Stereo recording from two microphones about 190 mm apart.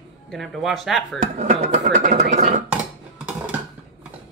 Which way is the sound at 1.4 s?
35° right (ahead or behind).